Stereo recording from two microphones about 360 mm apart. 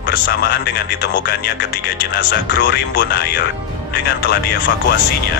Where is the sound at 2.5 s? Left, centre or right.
Left.